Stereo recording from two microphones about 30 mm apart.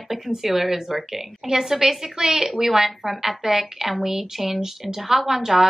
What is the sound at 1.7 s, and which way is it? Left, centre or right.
Speech, centre.